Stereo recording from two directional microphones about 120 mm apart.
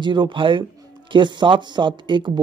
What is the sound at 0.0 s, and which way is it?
Speech, 40° right (ahead or behind).